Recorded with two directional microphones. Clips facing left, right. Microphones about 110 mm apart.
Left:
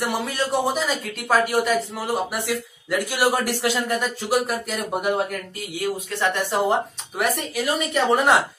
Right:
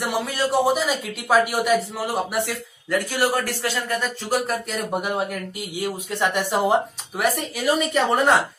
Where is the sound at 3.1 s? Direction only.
15° left (ahead or behind).